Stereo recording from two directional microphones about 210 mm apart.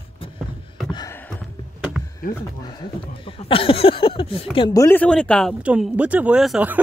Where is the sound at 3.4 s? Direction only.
25° left (ahead or behind).